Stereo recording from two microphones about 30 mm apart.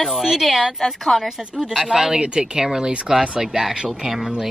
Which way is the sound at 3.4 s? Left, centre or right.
Centre.